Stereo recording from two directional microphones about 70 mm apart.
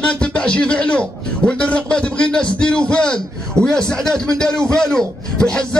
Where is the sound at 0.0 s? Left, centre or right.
Centre.